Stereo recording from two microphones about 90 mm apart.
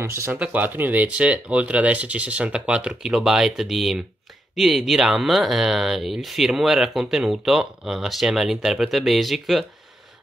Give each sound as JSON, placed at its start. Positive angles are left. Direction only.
{"t": 0.0, "sound": "speech", "side_deg": -30}
{"t": 0.3, "sound": "speech", "side_deg": -20}